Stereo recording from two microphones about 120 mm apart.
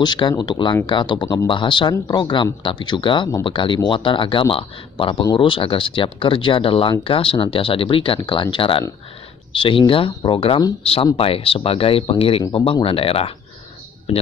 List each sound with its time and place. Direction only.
0.0 s speech: 40° left (ahead or behind); by 14.2 s 55° left (ahead or behind)